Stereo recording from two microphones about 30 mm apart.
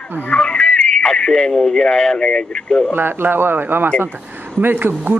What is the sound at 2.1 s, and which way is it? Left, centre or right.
Speech, left.